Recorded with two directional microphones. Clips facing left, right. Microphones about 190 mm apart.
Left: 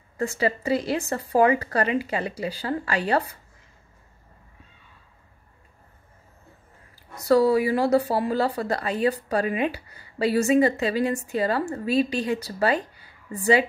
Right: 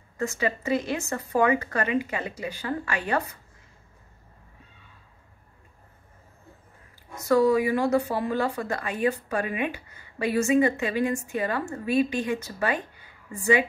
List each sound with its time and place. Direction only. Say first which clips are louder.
0.2 s a woman's voice: left 3 dB; 30° left (ahead or behind)
7.2 s a woman's voice: left 2 dB; 35° left (ahead or behind)